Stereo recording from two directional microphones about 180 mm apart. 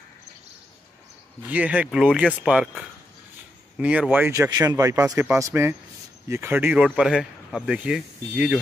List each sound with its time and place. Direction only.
1.5 s a man's voice: 10° right (ahead or behind)